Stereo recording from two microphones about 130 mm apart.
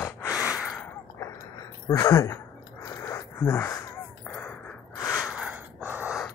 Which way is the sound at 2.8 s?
25° left (ahead or behind).